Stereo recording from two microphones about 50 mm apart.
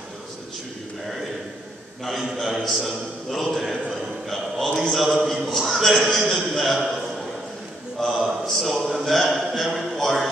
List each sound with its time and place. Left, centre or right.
2.3 s a man's voice: centre
4.8 s a man's voice: centre
8.0 s a man's voice: centre